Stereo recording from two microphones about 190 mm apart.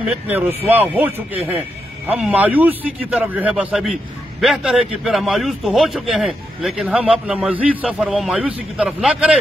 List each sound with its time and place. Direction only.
0.1 s a man's voice: 10° right (ahead or behind)